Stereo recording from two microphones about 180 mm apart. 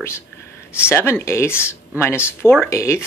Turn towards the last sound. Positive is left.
turn(degrees=15)  # may be behind; listen again after turning